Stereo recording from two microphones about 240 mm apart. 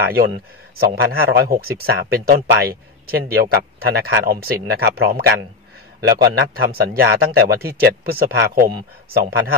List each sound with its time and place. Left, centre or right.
0.0 s speech: right